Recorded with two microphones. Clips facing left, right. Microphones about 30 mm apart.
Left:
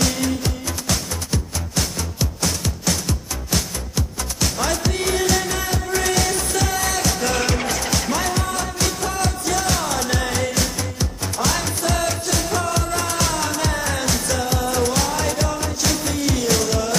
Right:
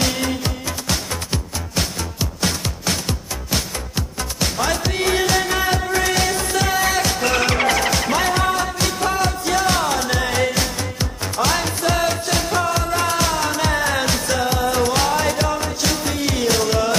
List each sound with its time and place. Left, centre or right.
0.0 s music: right
9.9 s music: centre